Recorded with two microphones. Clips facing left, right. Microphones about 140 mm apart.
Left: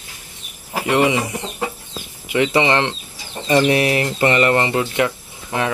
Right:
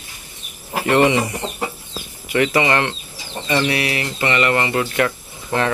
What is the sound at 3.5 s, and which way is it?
Speech, 40° left (ahead or behind).